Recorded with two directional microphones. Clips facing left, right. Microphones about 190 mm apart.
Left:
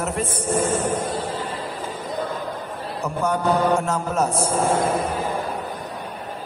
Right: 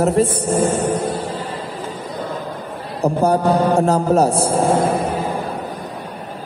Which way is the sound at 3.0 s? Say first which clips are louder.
Right 7 dB; 35° right (ahead or behind).